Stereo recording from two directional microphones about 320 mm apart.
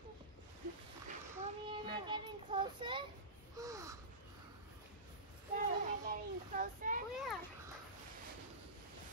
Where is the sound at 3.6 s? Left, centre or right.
Centre.